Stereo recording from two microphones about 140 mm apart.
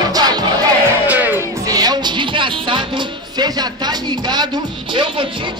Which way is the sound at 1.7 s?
30° right (ahead or behind).